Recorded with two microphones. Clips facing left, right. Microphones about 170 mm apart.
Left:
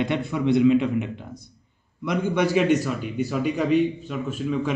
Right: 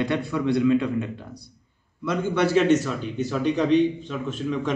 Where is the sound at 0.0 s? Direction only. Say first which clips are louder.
Even; 20° left (ahead or behind).